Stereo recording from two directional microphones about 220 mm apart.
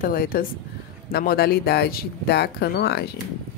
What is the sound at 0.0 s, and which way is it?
Speech, 40° left (ahead or behind).